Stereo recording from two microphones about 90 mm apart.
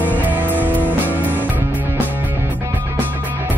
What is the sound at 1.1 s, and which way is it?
Music, 20° right (ahead or behind).